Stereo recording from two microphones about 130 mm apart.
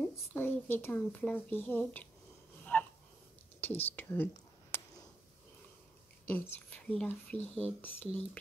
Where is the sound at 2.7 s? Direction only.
15° left (ahead or behind).